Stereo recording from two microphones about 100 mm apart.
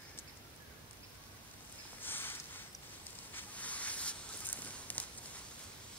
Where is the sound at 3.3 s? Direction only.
15° left (ahead or behind).